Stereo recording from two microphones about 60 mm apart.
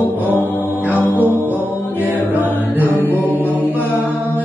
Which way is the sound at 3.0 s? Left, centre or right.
Left.